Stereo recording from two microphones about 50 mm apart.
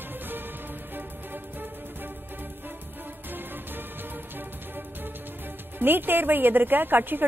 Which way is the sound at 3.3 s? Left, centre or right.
Right.